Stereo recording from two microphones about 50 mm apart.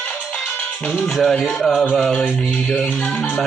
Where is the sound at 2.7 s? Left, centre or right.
Left.